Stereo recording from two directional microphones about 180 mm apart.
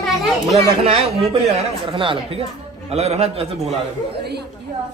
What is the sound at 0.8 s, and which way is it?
Speech, 30° right (ahead or behind).